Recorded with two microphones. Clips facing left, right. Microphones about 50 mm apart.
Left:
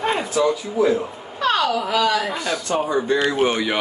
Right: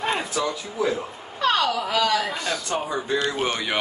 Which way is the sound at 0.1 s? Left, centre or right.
Centre.